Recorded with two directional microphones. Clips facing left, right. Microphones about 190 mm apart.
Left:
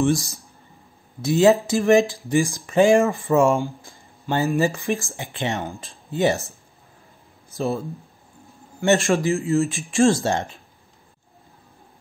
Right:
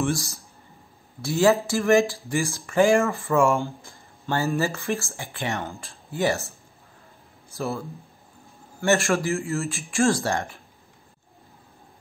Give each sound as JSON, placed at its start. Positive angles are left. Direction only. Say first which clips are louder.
{"t": 0.0, "sound": "speech", "louder": "left 5 dB", "side_deg": 20}
{"t": 7.5, "sound": "speech", "louder": "left 5 dB", "side_deg": 20}
{"t": 8.8, "sound": "speech", "louder": "left 3 dB", "side_deg": 20}